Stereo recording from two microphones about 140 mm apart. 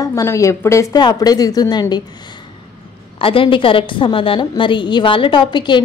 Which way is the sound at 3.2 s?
40° left (ahead or behind).